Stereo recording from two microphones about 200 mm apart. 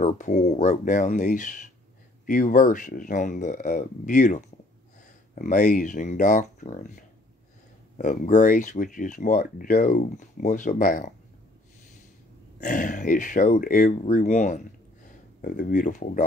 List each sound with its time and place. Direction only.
0.0 s speech: 35° left (ahead or behind)
8.0 s speech: 40° left (ahead or behind)
12.5 s speech: 40° left (ahead or behind)